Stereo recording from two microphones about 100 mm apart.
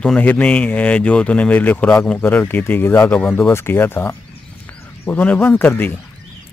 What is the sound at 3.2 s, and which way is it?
Speech, 10° left (ahead or behind).